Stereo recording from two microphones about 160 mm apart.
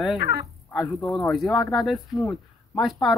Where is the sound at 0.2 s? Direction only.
75° right (ahead or behind).